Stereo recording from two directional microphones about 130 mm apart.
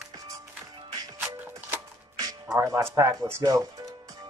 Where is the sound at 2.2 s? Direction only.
25° right (ahead or behind).